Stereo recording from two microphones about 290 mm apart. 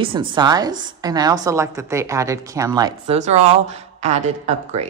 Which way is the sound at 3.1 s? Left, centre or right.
Right.